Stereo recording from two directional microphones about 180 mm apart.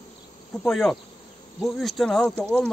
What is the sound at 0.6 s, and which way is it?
Speech, 5° left (ahead or behind).